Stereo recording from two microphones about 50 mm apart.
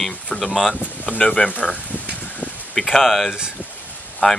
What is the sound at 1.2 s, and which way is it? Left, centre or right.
Speech, centre.